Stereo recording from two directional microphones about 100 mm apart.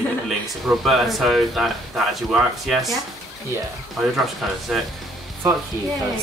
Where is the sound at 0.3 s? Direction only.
Centre (ahead or behind).